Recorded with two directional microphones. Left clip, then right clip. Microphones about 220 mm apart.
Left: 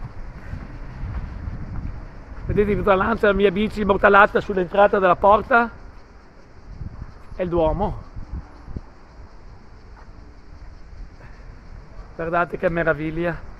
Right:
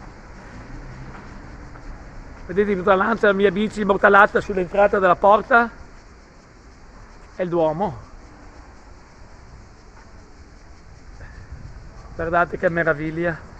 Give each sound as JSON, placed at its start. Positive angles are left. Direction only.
{"t": 2.5, "sound": "speech", "side_deg": 5}
{"t": 5.0, "sound": "speech", "side_deg": 5}
{"t": 7.3, "sound": "speech", "side_deg": 5}
{"t": 12.2, "sound": "speech", "side_deg": 0}